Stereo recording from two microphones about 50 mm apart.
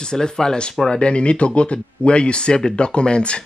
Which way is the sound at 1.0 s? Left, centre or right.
Left.